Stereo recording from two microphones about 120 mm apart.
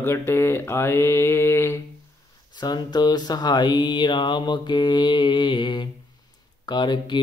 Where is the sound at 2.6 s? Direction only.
35° left (ahead or behind).